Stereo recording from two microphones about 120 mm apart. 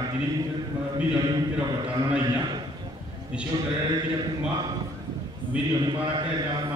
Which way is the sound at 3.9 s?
35° right (ahead or behind).